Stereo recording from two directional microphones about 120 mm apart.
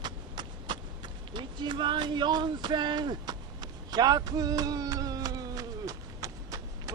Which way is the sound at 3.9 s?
35° right (ahead or behind).